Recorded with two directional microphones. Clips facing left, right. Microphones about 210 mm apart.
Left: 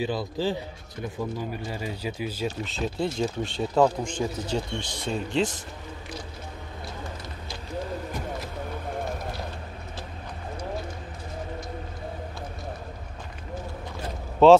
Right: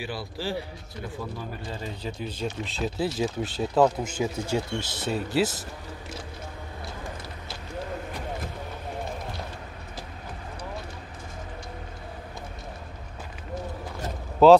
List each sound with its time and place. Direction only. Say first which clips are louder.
0.0 s speech: left 6 dB; 20° left (ahead or behind); by 5.6 s 5° right (ahead or behind)
14.4 s speech: even; centre (ahead or behind)